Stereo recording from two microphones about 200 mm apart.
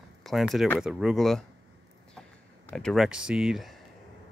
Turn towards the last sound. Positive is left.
turn(degrees=0)  # may be behind; listen again after turning